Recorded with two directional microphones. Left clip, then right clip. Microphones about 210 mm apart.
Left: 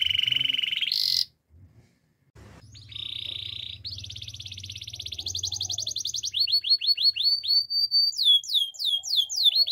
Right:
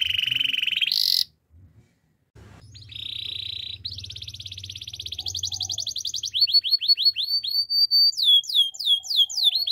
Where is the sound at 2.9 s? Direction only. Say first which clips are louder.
Right 2 dB; 15° right (ahead or behind).